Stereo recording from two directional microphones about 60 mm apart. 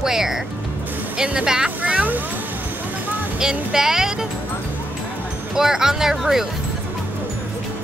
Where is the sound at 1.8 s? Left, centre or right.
Right.